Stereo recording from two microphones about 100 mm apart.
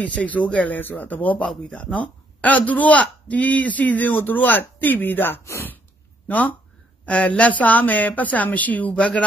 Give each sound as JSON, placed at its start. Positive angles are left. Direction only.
{"t": 0.0, "sound": "a man's voice", "side_deg": 15}